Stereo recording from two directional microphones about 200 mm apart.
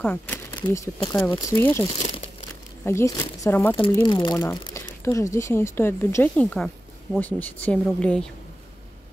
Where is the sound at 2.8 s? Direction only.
15° left (ahead or behind).